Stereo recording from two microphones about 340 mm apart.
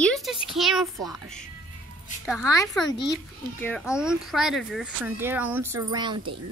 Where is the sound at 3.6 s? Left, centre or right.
Centre.